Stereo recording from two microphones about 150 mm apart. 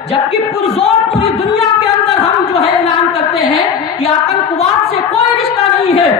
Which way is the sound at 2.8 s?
40° left (ahead or behind).